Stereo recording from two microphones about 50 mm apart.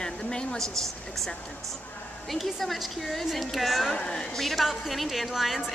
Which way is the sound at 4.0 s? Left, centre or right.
Centre.